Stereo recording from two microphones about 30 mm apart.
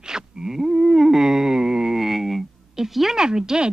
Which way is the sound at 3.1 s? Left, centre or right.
Right.